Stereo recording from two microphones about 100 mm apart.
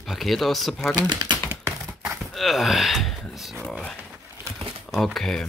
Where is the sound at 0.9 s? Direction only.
45° right (ahead or behind).